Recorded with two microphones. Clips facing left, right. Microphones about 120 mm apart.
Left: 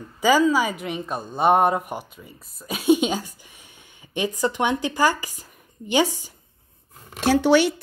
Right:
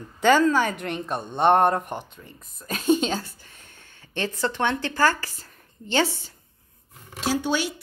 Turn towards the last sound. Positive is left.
turn(degrees=70)  # may be behind; listen again after turning